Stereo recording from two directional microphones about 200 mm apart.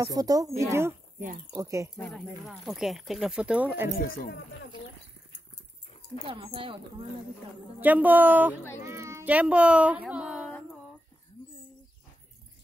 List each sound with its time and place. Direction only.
0.0 s speech: 20° right (ahead or behind)
2.0 s speech: centre (ahead or behind)
4.1 s speech: 45° left (ahead or behind)
6.2 s speech: 25° right (ahead or behind)
7.8 s speech: 10° right (ahead or behind)